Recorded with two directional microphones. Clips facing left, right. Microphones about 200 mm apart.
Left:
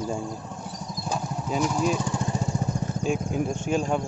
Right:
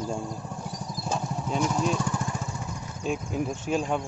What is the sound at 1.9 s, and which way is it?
Vehicle, 20° left (ahead or behind).